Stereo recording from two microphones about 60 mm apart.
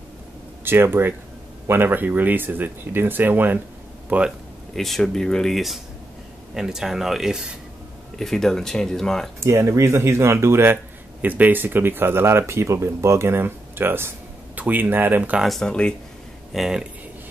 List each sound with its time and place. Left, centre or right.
0.7 s speech: right
4.7 s speech: centre
6.5 s speech: centre
8.2 s speech: centre
9.4 s speech: right
11.1 s speech: right
14.5 s speech: right
15.4 s speech: centre